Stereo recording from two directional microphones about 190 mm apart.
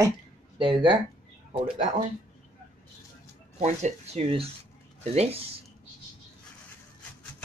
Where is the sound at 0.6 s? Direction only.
25° right (ahead or behind).